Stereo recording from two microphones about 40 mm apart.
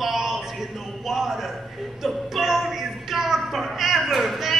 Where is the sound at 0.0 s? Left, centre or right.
Centre.